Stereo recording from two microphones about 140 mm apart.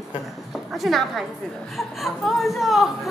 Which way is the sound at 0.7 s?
Centre (ahead or behind).